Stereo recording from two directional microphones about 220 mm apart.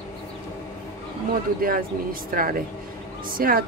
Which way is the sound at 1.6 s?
40° right (ahead or behind).